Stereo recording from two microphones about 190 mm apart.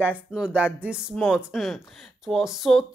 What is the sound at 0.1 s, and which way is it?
Speech, 5° right (ahead or behind).